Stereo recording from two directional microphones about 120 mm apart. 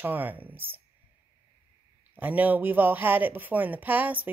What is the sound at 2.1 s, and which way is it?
Speech, 15° right (ahead or behind).